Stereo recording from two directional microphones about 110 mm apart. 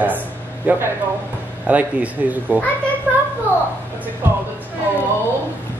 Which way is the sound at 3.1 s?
20° right (ahead or behind).